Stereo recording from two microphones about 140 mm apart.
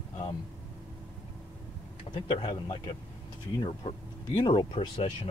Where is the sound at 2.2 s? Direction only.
35° left (ahead or behind).